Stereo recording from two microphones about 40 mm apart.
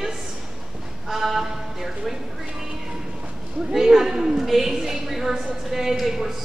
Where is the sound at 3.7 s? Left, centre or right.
Centre.